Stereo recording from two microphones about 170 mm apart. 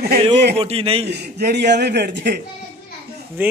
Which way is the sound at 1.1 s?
75° right (ahead or behind).